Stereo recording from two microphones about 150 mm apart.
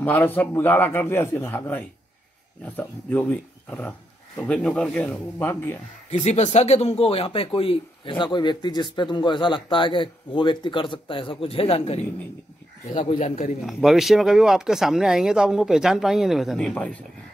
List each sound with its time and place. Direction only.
0.0 s a man's voice: 15° left (ahead or behind)
6.0 s speech: 50° left (ahead or behind)
13.2 s a man's voice: 55° left (ahead or behind)
13.6 s speech: centre (ahead or behind)